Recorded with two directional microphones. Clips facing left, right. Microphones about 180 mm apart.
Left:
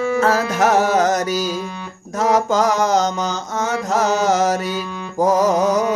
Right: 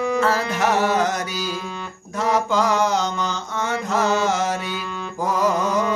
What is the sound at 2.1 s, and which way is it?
Mantra, 40° left (ahead or behind).